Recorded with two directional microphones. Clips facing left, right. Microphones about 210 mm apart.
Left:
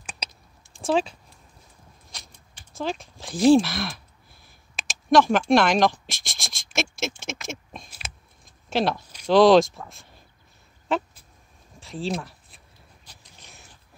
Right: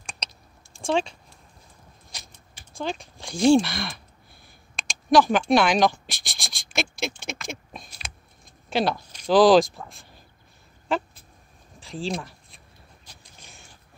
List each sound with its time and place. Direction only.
0.8 s speech: 5° left (ahead or behind)
2.1 s speech: centre (ahead or behind)
11.8 s a sound: centre (ahead or behind)